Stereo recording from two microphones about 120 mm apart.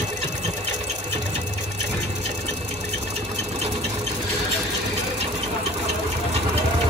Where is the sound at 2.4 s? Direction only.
65° right (ahead or behind).